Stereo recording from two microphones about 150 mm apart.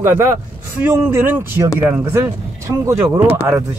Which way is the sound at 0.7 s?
15° right (ahead or behind).